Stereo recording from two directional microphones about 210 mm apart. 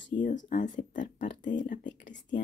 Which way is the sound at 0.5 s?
60° left (ahead or behind).